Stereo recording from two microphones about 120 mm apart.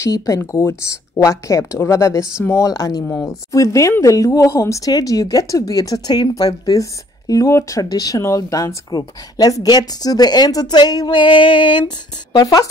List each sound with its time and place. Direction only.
0.0 s speech: 25° left (ahead or behind)